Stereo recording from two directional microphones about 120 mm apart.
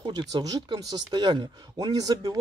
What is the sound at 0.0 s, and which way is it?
Speech, 35° right (ahead or behind).